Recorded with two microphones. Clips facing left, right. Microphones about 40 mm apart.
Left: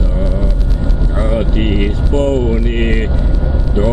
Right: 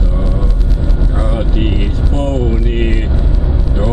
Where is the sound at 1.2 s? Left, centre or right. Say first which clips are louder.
Left 3 dB; centre.